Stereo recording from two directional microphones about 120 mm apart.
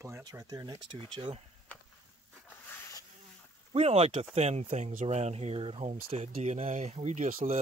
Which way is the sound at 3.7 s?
60° right (ahead or behind).